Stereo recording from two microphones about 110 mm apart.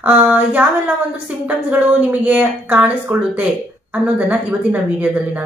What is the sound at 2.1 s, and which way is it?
Speech, 15° right (ahead or behind).